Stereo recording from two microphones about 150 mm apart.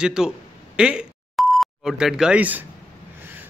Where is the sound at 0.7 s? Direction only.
5° right (ahead or behind).